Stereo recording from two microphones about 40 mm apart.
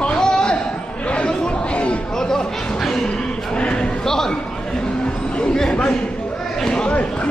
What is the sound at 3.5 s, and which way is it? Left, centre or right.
Livestock, left.